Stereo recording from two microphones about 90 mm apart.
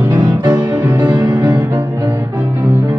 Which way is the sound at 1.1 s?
55° right (ahead or behind).